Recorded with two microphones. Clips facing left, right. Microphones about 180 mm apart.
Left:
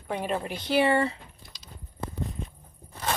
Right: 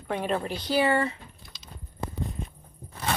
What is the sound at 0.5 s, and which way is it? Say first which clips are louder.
Speech: left 2 dB; 25° left (ahead or behind).